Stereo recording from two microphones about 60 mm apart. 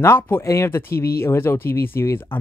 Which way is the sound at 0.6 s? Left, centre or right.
Left.